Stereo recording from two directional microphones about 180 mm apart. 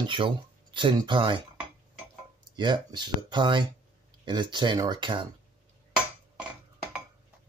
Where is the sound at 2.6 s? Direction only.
25° right (ahead or behind).